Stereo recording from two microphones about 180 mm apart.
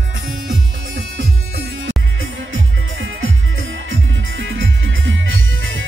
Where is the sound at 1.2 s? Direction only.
65° right (ahead or behind).